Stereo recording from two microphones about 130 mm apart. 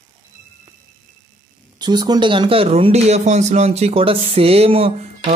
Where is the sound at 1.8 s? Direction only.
35° right (ahead or behind).